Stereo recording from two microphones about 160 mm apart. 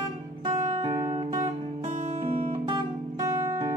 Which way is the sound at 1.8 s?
50° right (ahead or behind).